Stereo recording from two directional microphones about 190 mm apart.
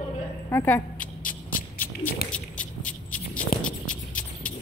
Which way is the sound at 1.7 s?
10° left (ahead or behind).